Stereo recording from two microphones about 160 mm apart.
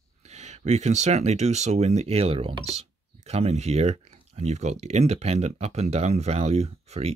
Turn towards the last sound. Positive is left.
turn(degrees=-40)  # may be behind; listen again after turning